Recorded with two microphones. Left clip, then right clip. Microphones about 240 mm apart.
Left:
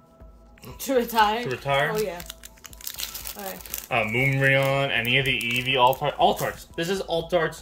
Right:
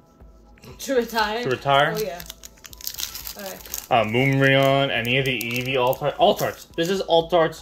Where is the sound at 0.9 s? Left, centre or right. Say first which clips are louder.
Left 1 dB; left.